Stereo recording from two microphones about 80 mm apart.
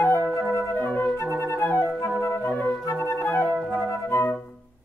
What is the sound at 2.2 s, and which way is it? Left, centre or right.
Music, left.